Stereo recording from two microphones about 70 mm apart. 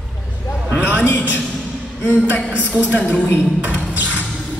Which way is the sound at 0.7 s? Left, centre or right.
Right.